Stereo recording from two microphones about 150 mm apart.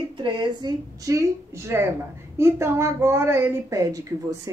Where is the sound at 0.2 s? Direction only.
30° right (ahead or behind).